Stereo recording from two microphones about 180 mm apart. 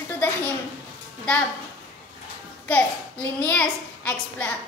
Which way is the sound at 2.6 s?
5° left (ahead or behind).